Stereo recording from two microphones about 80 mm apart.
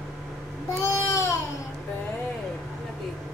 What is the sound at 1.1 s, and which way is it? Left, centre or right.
Baby cry, left.